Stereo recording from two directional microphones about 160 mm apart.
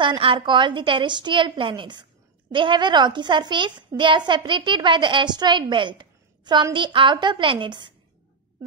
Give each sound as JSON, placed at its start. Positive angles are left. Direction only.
{"t": 0.0, "sound": "a woman's voice", "side_deg": -30}